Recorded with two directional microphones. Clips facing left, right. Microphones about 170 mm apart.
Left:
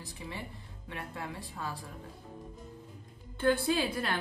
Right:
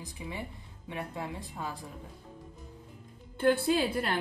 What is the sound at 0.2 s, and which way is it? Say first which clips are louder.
Speech: right 3 dB; 15° right (ahead or behind).